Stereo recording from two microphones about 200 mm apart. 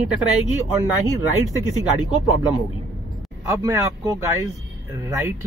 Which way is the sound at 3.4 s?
15° right (ahead or behind).